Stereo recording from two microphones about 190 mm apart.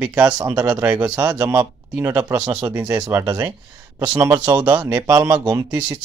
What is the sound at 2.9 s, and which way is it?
Speech, 20° right (ahead or behind).